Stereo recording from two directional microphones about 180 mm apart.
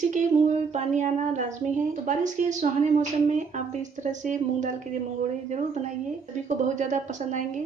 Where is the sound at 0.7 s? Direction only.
40° right (ahead or behind).